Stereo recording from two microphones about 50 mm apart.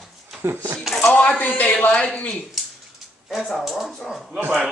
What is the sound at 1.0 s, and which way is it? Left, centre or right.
A woman's voice, left.